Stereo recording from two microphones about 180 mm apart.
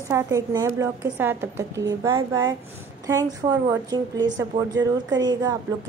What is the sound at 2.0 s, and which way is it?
A woman's voice, 25° right (ahead or behind).